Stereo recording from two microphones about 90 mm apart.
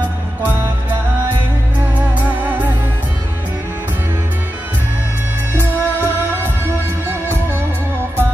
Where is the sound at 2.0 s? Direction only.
15° right (ahead or behind).